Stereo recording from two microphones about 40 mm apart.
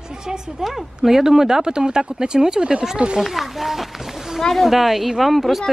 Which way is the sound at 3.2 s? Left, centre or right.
Centre.